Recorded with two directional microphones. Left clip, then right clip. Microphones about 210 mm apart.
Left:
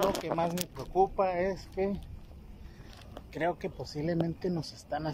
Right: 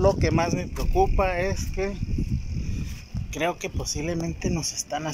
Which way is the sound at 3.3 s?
Centre (ahead or behind).